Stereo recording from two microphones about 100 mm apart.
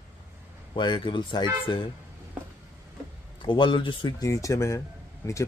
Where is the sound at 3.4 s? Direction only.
55° left (ahead or behind).